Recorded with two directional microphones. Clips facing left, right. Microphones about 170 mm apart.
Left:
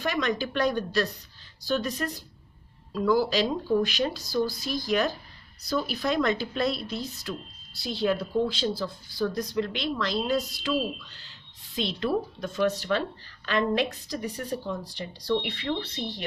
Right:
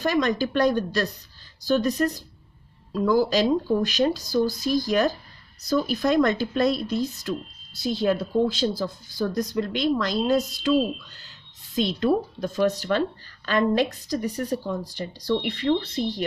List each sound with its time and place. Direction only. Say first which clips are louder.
0.0 s a woman's voice: right 5 dB; 40° right (ahead or behind)